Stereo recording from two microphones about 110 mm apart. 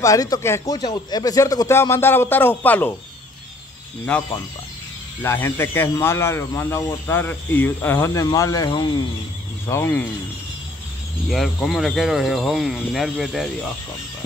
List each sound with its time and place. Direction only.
0.0 s speech: 30° left (ahead or behind)
0.7 s speech: 40° left (ahead or behind); by 2.9 s 15° left (ahead or behind)
4.1 s speech: 10° left (ahead or behind)
5.2 s speech: 20° left (ahead or behind)
8.6 s speech: 45° left (ahead or behind)
9.7 s speech: 25° left (ahead or behind)
11.2 s speech: centre (ahead or behind)